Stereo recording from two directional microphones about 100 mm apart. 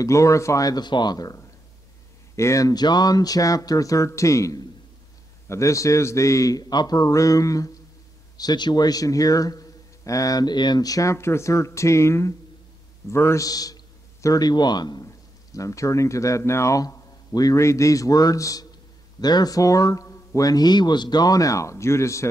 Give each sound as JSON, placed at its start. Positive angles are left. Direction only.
{"t": 0.0, "sound": "a man's voice", "side_deg": 30}
{"t": 15.5, "sound": "a man's voice", "side_deg": 30}